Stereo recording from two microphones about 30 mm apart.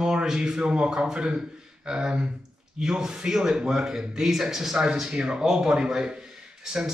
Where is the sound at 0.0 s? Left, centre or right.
Right.